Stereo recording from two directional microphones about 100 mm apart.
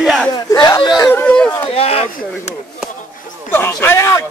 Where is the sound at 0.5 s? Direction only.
45° left (ahead or behind).